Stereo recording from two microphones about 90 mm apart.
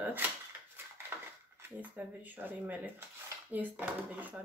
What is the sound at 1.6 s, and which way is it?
Speech, 20° right (ahead or behind).